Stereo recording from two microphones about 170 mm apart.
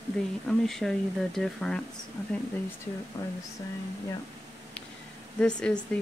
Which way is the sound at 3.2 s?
20° left (ahead or behind).